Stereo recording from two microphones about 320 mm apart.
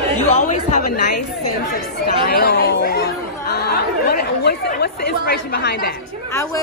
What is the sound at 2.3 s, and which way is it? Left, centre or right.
Speech, left.